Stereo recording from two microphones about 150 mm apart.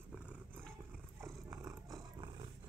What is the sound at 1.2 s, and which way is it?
Roar, 20° right (ahead or behind).